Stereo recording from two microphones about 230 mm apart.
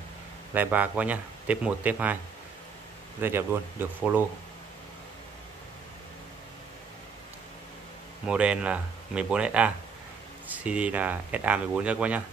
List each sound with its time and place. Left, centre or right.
0.6 s speech: centre
3.2 s speech: centre
8.3 s speech: centre